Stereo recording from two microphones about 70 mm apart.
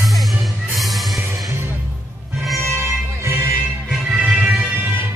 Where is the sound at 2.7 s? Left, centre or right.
Right.